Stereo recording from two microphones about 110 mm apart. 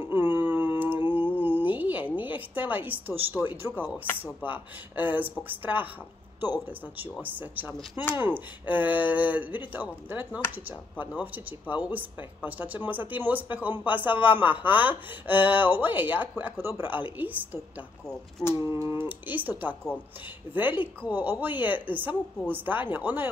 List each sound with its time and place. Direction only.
0.0 s a sound: 20° right (ahead or behind)
2.1 s speech: 15° right (ahead or behind)
18.7 s speech: 25° right (ahead or behind)
20.5 s speech: 15° right (ahead or behind)